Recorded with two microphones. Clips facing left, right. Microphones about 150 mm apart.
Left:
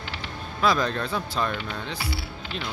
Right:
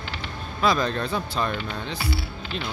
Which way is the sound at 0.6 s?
5° left (ahead or behind).